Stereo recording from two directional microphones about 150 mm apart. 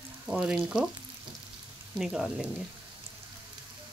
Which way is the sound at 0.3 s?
5° right (ahead or behind).